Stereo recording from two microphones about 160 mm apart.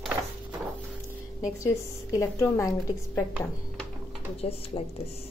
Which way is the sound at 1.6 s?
20° left (ahead or behind).